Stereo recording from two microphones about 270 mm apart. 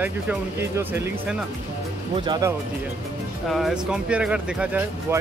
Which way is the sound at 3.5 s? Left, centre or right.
Centre.